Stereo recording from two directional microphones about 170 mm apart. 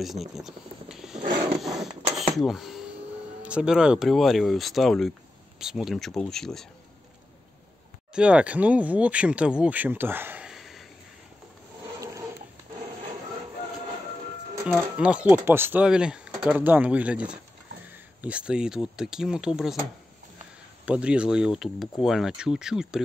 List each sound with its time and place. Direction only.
0.0 s speech: centre (ahead or behind)
1.2 s a sound: 50° right (ahead or behind)
1.6 s a sound: centre (ahead or behind)
2.3 s speech: centre (ahead or behind)
8.1 s speech: 5° right (ahead or behind)
14.7 s speech: 5° right (ahead or behind)
20.8 s speech: 5° right (ahead or behind)